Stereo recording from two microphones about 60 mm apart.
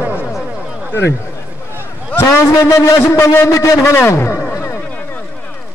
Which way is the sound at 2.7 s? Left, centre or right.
Left.